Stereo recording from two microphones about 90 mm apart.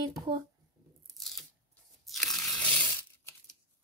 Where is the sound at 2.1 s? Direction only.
5° left (ahead or behind).